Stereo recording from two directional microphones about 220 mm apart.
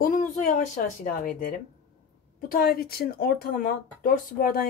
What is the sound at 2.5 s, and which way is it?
A woman's voice, 40° left (ahead or behind).